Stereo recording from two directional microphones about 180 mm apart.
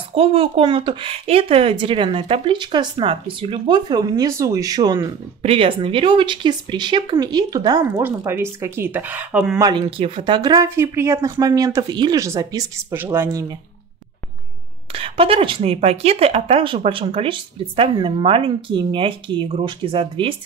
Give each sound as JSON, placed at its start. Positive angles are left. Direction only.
{"t": 0.1, "sound": "speech", "side_deg": -30}
{"t": 9.6, "sound": "speech", "side_deg": -25}
{"t": 14.9, "sound": "speech", "side_deg": -30}